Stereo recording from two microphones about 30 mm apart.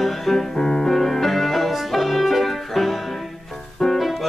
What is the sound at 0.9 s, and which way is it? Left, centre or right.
Music, centre.